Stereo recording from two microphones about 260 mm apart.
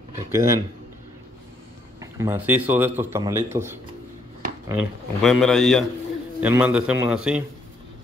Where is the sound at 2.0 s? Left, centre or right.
Centre.